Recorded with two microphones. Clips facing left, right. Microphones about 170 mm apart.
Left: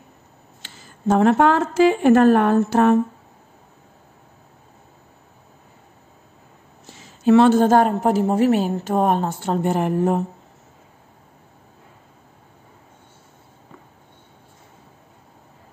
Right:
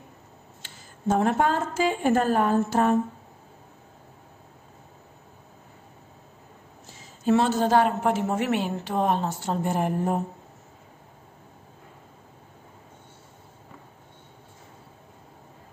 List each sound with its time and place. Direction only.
0.6 s a woman's voice: 80° left
7.0 s a woman's voice: 70° left (ahead or behind)